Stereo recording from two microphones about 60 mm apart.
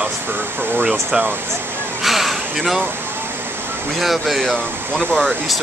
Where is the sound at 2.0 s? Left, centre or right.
Centre.